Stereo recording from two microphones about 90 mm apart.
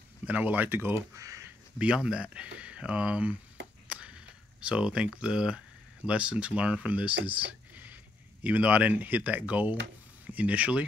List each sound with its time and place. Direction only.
0.3 s speech: 20° right (ahead or behind)
1.1 s speech: 35° right (ahead or behind)
2.0 s speech: 10° right (ahead or behind)
3.8 s a sound: 15° right (ahead or behind)
6.0 s speech: 15° right (ahead or behind)